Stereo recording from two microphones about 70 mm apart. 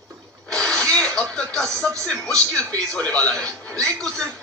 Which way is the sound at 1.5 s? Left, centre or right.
Centre.